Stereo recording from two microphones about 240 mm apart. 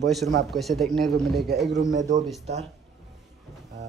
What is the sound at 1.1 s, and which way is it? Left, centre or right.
Speech, right.